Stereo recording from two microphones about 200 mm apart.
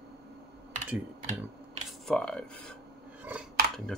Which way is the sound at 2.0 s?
5° left (ahead or behind).